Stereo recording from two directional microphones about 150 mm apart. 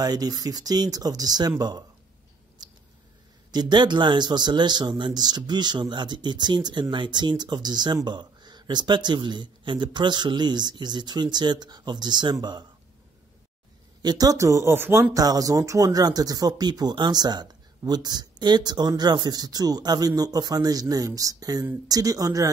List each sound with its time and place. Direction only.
0.0 s speech: 25° right (ahead or behind)
2.6 s a sound: 30° right (ahead or behind)
3.5 s speech: 30° right (ahead or behind)
14.0 s speech: 25° right (ahead or behind)